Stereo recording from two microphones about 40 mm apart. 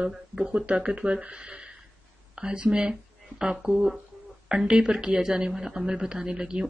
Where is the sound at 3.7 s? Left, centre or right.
Centre.